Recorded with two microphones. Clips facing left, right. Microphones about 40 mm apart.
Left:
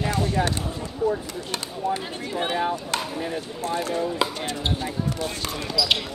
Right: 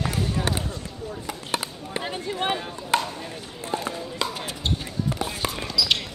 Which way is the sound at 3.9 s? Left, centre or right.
Centre.